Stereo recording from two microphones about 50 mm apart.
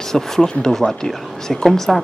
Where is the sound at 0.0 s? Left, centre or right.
Centre.